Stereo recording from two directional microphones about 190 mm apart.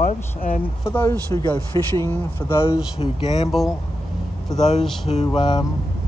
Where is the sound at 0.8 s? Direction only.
15° left (ahead or behind).